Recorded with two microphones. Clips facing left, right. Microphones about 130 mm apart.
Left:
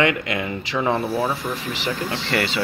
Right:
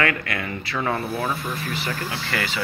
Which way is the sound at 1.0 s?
30° left (ahead or behind).